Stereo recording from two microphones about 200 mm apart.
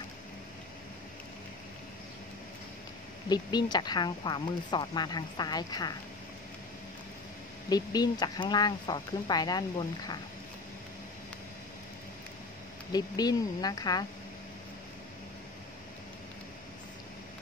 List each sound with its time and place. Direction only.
3.3 s speech: 20° left (ahead or behind)
7.7 s speech: 20° left (ahead or behind)
12.9 s speech: 20° left (ahead or behind)